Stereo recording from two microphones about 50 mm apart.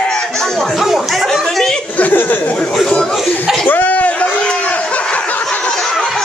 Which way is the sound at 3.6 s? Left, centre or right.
Left.